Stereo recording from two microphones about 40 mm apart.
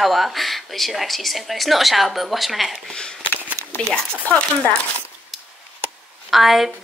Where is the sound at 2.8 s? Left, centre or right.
Left.